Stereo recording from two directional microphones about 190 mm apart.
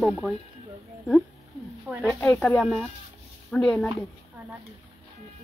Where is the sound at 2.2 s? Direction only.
10° left (ahead or behind).